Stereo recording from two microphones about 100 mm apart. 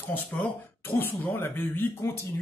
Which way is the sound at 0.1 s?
20° left (ahead or behind).